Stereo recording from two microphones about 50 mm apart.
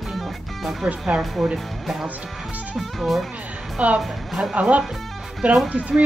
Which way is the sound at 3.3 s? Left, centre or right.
Right.